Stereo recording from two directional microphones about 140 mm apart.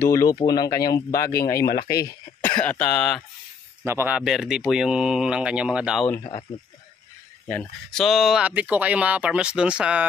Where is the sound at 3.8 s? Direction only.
15° right (ahead or behind).